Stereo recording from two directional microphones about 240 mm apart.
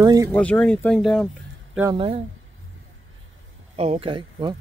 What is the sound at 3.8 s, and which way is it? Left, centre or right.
Speech, right.